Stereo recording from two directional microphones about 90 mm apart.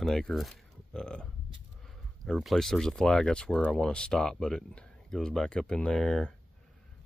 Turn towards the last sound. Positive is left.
turn(degrees=5)  # may be behind; listen again after turning